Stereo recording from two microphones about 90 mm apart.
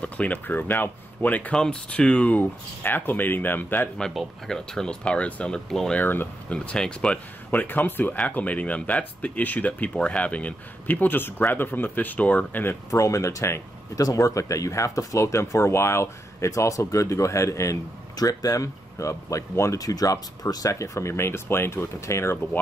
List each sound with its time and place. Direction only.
0.0 s speech: 15° left (ahead or behind)
4.0 s speech: 5° left (ahead or behind)
5.9 s speech: 20° left (ahead or behind)
12.6 s speech: 35° left (ahead or behind)